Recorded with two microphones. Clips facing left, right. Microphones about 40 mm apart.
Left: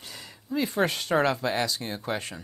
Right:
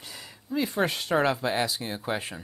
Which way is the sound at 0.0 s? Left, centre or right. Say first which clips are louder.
Even; centre.